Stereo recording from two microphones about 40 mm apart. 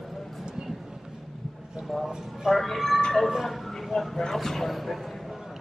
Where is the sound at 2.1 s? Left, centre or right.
Centre.